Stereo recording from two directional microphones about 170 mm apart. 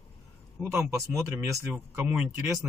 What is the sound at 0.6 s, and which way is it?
Speech, 20° right (ahead or behind).